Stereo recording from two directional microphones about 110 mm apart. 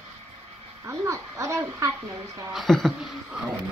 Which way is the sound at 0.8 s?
25° right (ahead or behind).